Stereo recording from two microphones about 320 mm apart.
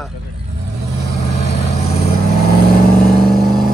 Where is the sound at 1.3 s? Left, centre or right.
Centre.